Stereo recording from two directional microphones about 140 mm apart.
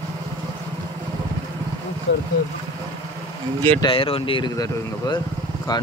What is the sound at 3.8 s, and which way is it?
Speech, 40° left (ahead or behind).